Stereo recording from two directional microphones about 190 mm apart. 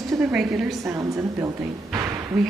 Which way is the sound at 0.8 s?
15° right (ahead or behind).